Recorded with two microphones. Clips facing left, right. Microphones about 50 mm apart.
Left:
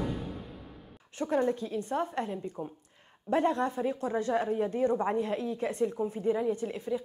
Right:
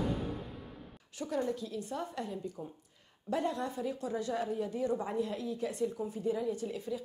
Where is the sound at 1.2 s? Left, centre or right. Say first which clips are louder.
Left 6 dB; left.